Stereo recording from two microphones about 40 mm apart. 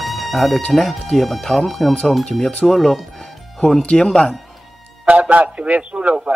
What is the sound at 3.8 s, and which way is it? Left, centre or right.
Speech, left.